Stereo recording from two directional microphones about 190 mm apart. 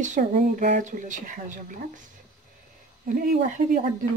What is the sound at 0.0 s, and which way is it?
Speech, 40° right (ahead or behind).